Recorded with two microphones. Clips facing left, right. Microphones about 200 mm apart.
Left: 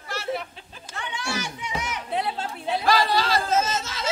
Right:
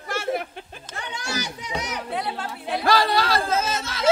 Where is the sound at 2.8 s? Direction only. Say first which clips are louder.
Right 2 dB; 55° right (ahead or behind).